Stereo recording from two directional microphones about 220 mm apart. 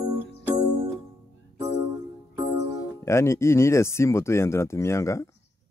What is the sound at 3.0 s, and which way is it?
Speech, 10° left (ahead or behind).